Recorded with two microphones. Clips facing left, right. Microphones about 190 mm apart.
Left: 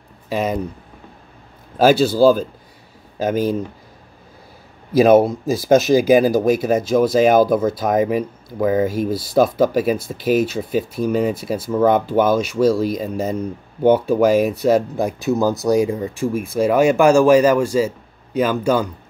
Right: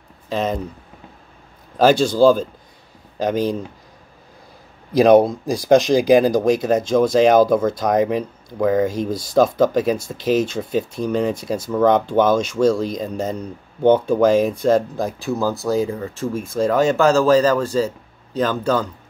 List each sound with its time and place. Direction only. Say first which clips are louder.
0.3 s speech: left 1 dB; 10° left (ahead or behind)
1.8 s speech: left 1 dB; 5° left (ahead or behind)
4.9 s speech: even; 5° left (ahead or behind)
15.2 s speech: left 4 dB; 20° left (ahead or behind)